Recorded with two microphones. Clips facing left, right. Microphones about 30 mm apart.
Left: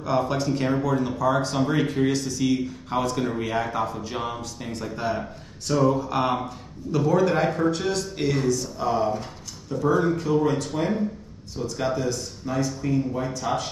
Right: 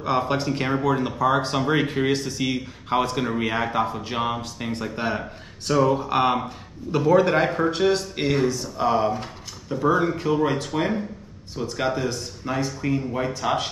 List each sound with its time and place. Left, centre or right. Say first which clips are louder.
0.0 s a man's voice: right 1 dB; right